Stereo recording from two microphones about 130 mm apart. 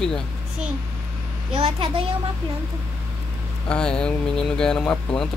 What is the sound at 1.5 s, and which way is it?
Speech, 50° right (ahead or behind).